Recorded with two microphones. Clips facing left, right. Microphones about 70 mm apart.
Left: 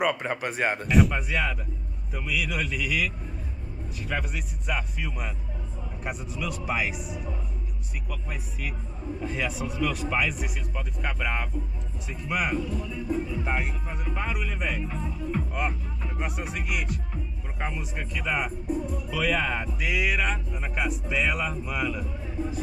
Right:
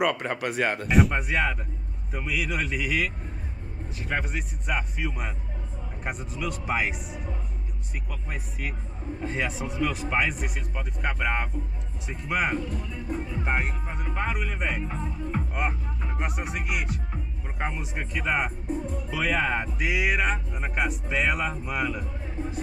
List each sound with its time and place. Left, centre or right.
0.0 s speech: centre
0.4 s speech: centre
0.8 s a man's voice: centre
1.1 s a man's voice: centre
4.1 s speech: centre
6.3 s a man's voice: centre
9.2 s a man's voice: centre
12.3 s speech: right
12.6 s speech: centre
13.1 s speech: right
14.0 s a man's voice: centre
17.1 s speech: centre
19.8 s speech: centre
22.2 s music: right